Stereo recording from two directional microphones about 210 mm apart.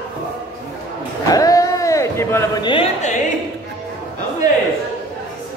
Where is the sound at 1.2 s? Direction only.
15° left (ahead or behind).